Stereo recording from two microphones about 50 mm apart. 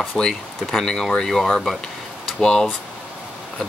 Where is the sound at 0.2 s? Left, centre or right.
Centre.